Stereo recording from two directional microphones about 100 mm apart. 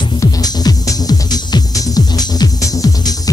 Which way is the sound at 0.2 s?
40° left (ahead or behind).